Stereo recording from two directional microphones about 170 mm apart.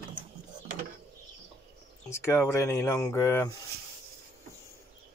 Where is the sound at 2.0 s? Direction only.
15° left (ahead or behind).